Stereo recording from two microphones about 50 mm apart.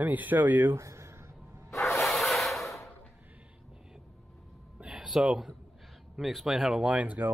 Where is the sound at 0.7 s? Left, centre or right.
Right.